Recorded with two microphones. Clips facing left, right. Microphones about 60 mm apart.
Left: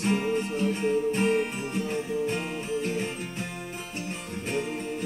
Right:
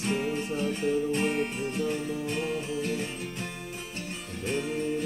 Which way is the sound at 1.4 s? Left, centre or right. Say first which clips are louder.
Left 1 dB; centre.